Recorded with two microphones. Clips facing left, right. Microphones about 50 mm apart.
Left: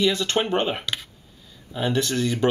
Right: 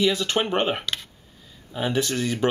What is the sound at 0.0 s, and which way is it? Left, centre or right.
Speech, centre.